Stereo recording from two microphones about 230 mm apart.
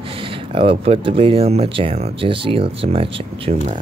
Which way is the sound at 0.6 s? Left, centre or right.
Right.